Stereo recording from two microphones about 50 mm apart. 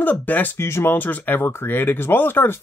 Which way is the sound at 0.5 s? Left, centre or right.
Left.